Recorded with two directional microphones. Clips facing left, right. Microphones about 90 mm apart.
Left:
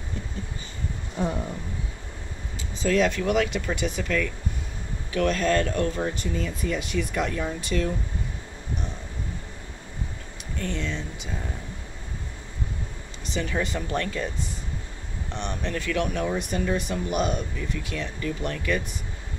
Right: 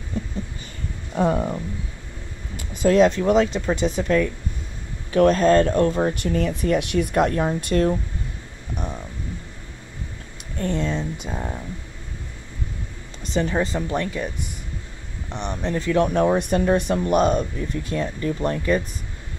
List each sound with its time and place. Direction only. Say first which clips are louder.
1.1 s speech: right 8 dB; 60° right (ahead or behind)
2.8 s speech: right 6 dB; 35° right (ahead or behind)
6.1 s speech: right 7 dB; 60° right (ahead or behind)
10.6 s speech: right 7 dB; 40° right (ahead or behind)
13.3 s speech: right 5 dB; 35° right (ahead or behind); by 14.3 s 15° right (ahead or behind)
15.3 s speech: right 5 dB; 20° right (ahead or behind); by 16.3 s 40° right (ahead or behind)
16.3 s speech: right 7 dB; 50° right (ahead or behind); by 18.8 s 35° right (ahead or behind)